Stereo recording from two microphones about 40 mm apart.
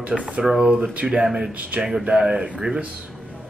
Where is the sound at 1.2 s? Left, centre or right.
Centre.